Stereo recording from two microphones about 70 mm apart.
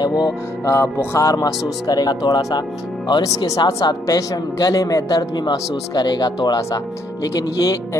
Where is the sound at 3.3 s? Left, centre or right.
Left.